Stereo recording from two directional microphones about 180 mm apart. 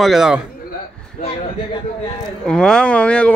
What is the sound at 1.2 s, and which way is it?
Speech, 45° left (ahead or behind).